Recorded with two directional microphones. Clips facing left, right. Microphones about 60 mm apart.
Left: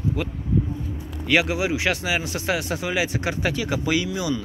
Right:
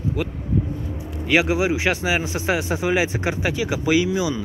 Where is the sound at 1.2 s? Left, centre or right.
Centre.